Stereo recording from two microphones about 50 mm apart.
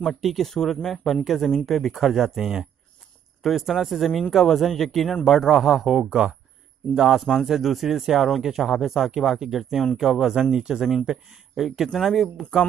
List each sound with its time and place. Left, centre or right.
0.0 s a man's voice: centre
6.0 s a man's voice: centre
11.9 s a man's voice: centre